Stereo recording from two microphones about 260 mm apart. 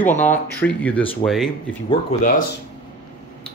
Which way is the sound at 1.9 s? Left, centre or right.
Left.